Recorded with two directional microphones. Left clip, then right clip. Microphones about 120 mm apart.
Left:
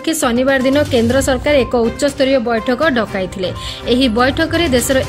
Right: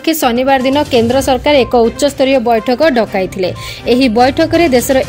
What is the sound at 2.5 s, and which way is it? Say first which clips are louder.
Speech: right 4 dB; 50° right (ahead or behind).